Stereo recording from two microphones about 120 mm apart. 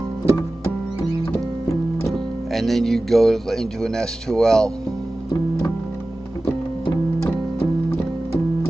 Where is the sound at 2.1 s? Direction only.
Centre (ahead or behind).